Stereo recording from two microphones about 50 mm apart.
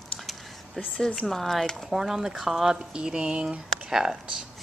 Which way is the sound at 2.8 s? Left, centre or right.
Centre.